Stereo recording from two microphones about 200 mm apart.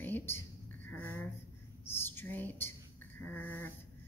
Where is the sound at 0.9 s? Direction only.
10° left (ahead or behind).